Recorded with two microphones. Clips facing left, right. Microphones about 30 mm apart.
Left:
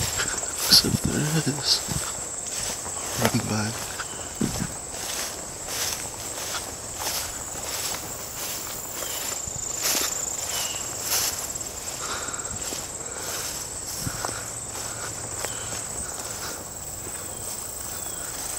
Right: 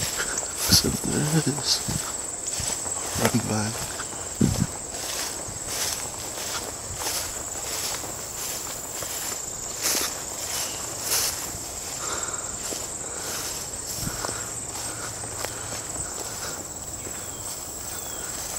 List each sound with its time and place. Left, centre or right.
0.2 s a sound: left
0.7 s insect: left
1.1 s cricket: centre
2.6 s walk: centre
3.3 s speech: left
3.6 s speech: centre
4.4 s horse: centre
5.0 s a sound: centre
7.0 s walk: centre
9.0 s walk: centre
11.1 s a sound: centre
12.0 s walk: centre
13.2 s a sound: centre
14.0 s walk: centre